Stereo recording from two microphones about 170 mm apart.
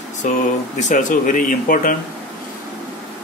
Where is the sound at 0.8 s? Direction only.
45° left (ahead or behind).